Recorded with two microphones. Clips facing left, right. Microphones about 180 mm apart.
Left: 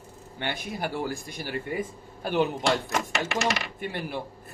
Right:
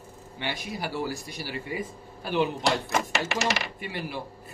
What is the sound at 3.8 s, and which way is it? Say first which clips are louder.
Speech: left 2 dB; 55° left (ahead or behind).